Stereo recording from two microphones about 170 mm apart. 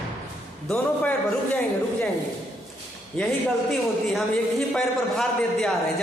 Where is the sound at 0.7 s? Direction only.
5° left (ahead or behind).